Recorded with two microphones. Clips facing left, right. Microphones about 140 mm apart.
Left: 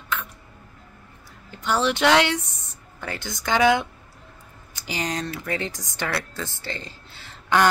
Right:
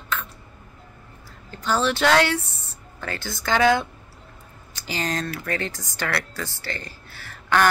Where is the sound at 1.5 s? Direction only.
15° left (ahead or behind).